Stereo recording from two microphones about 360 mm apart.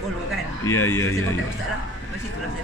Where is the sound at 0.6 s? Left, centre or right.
Centre.